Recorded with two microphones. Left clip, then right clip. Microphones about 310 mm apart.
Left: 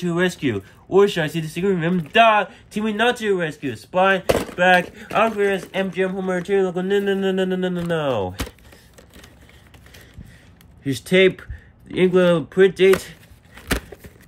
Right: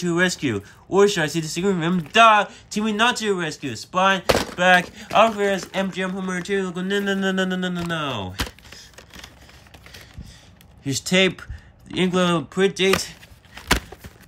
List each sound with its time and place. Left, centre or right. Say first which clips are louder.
0.0 s speech: even; centre
11.1 s speech: left 4 dB; centre